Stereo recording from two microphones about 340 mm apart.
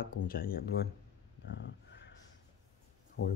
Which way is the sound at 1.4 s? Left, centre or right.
Left.